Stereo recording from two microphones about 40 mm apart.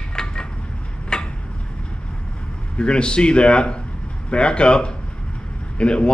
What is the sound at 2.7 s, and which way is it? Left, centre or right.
A man's voice, left.